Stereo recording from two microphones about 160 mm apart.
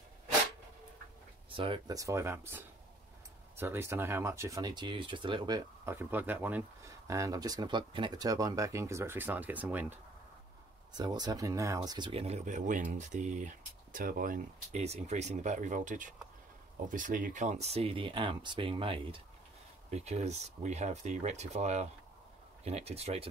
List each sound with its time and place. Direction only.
1.5 s speech: 35° right (ahead or behind)
2.0 s speech: 20° right (ahead or behind)
5.9 s speech: 15° right (ahead or behind)
10.9 s speech: 25° right (ahead or behind); by 14.4 s 60° right (ahead or behind)
14.7 s speech: 40° right (ahead or behind)
19.9 s speech: 45° right (ahead or behind)